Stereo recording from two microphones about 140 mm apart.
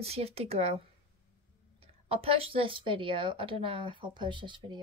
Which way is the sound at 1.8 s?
40° right (ahead or behind).